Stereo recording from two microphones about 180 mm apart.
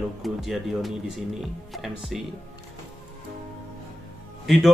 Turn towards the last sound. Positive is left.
turn(degrees=0)  # may be behind; listen again after turning